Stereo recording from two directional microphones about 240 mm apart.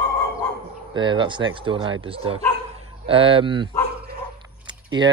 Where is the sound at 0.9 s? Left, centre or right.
Centre.